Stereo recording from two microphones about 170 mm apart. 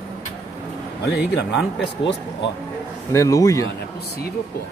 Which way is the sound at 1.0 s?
90° left.